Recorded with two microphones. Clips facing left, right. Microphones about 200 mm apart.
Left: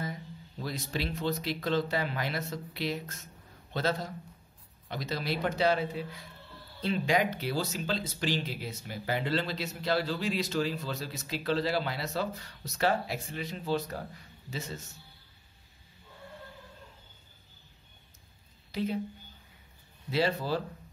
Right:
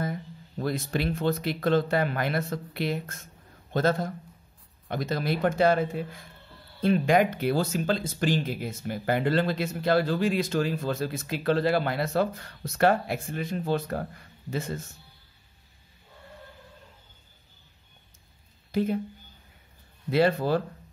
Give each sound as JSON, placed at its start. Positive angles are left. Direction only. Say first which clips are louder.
{"t": 0.0, "sound": "speech", "louder": "right 6 dB", "side_deg": -55}
{"t": 18.7, "sound": "speech", "louder": "right 6 dB", "side_deg": -50}
{"t": 20.1, "sound": "speech", "louder": "right 6 dB", "side_deg": -55}